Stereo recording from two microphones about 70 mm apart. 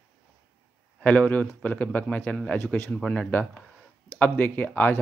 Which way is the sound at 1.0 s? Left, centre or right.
Centre.